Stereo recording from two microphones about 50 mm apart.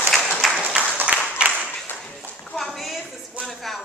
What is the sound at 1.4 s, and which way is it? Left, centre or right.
Clapping, right.